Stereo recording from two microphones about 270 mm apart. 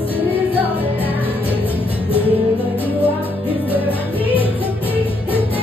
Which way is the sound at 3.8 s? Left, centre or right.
Centre.